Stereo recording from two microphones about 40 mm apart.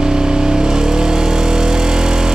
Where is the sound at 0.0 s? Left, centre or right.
Centre.